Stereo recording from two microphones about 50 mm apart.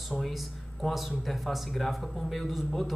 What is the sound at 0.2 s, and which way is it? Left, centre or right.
Speech, centre.